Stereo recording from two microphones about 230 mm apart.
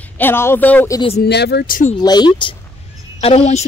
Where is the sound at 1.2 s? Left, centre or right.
Left.